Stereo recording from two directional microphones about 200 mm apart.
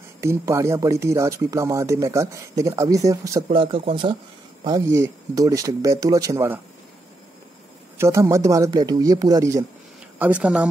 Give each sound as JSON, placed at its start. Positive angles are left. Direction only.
{"t": 0.2, "sound": "speech", "side_deg": -15}
{"t": 8.0, "sound": "speech", "side_deg": -15}